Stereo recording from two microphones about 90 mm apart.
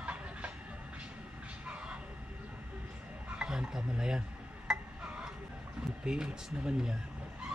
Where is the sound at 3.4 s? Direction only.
10° right (ahead or behind).